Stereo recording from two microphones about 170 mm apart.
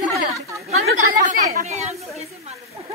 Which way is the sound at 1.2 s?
50° right (ahead or behind).